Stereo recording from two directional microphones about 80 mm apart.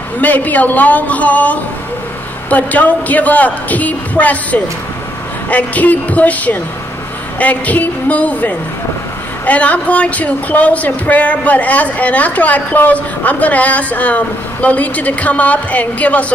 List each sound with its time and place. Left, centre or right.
0.2 s speech: left